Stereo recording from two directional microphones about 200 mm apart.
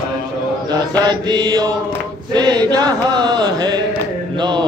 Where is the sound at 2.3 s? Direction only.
20° right (ahead or behind).